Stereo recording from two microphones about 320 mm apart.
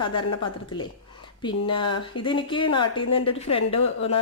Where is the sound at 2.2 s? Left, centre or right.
Centre.